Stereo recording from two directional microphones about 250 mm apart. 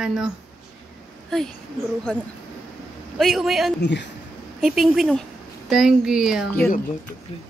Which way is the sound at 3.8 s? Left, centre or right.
Left.